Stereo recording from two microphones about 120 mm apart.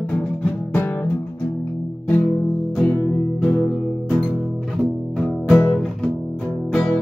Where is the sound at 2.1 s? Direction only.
20° left (ahead or behind).